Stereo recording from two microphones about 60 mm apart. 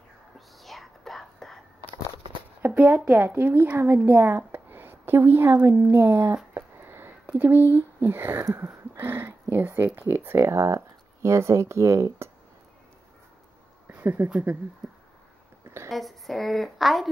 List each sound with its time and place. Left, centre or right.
0.6 s whispering: centre
2.6 s a woman's voice: right
6.5 s a sound: right
7.3 s speech: right
8.5 s a sound: right
9.9 s speech: right
10.4 s speech: right
13.9 s speech: right
15.6 s a sound: right
15.9 s a woman's voice: centre